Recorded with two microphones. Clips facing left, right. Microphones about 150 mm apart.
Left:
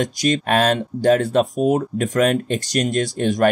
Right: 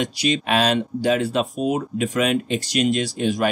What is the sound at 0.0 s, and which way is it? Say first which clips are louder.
Speech: left 2 dB; 45° left (ahead or behind).